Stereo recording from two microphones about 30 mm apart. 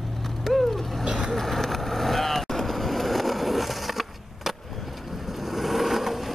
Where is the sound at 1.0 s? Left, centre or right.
Right.